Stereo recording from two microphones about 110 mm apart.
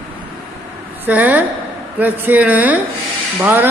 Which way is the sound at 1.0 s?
15° right (ahead or behind).